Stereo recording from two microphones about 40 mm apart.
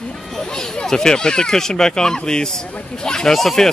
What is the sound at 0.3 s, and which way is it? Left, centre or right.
Speech, centre.